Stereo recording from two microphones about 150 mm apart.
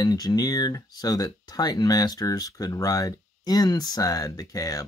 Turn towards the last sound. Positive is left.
turn(degrees=25)  # may be behind; listen again after turning